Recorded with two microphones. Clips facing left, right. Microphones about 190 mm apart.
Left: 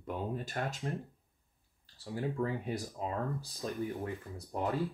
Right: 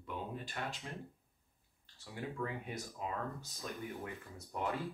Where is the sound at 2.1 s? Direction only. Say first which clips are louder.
Left 6 dB; 35° left (ahead or behind).